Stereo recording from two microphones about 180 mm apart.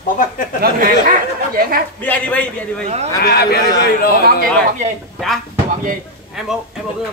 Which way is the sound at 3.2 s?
60° left (ahead or behind).